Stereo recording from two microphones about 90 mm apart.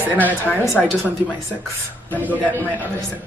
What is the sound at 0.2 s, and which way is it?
Speech, 15° left (ahead or behind).